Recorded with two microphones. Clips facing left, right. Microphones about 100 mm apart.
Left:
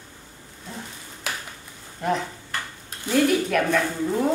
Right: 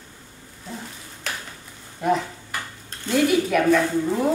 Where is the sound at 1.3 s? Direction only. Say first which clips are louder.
Even; 5° left (ahead or behind).